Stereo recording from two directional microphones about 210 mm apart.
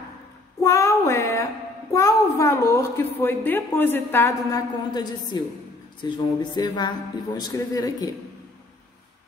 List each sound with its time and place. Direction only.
0.6 s child singing: 15° left (ahead or behind)
6.0 s a man's voice: 20° left (ahead or behind)